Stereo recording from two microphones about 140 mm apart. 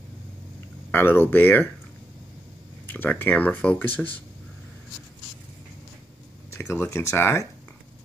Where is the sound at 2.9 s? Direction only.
15° left (ahead or behind).